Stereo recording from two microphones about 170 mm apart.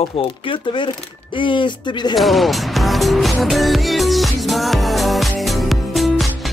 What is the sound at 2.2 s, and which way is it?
Music, centre (ahead or behind).